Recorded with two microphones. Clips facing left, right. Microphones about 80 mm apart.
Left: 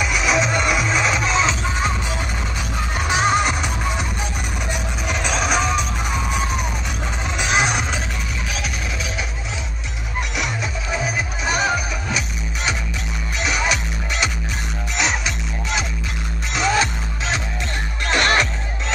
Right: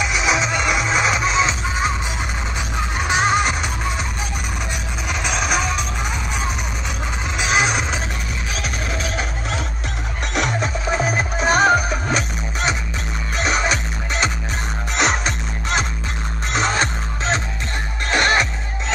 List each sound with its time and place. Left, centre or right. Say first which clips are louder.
0.0 s music: even; centre
3.0 s music: even; centre
5.0 s music: left 1 dB; centre
7.3 s music: right 1 dB; centre
10.3 s music: right 7 dB; right
13.4 s music: right 2 dB; right
15.0 s music: right 3 dB; right
18.0 s music: even; right